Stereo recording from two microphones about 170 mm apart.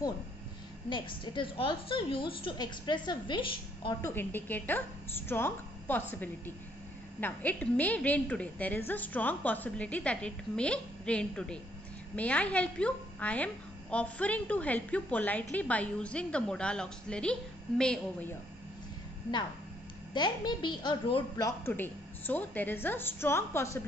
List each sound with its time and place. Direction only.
0.8 s a woman's voice: 30° left (ahead or behind)
4.0 s a woman's voice: 10° left (ahead or behind)
20.2 s a woman's voice: 25° left (ahead or behind)